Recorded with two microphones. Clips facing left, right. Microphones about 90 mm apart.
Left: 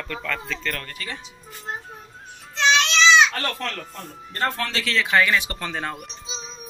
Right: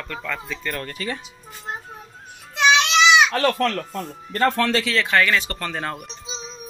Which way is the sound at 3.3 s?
90° right.